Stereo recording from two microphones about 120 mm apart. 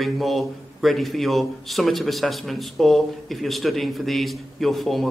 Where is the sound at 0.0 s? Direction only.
Centre (ahead or behind).